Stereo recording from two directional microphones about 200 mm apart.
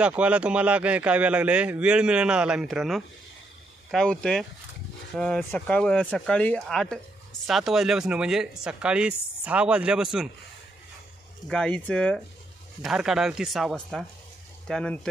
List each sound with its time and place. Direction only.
0.0 s speech: 5° right (ahead or behind)
11.4 s speech: 5° left (ahead or behind)